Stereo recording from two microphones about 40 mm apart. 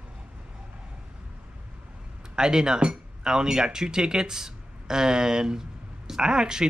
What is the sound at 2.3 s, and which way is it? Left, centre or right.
Speech, centre.